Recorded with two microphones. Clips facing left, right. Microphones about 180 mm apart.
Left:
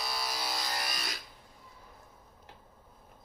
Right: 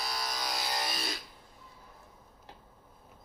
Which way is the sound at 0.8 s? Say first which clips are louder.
Right 3 dB; 25° right (ahead or behind).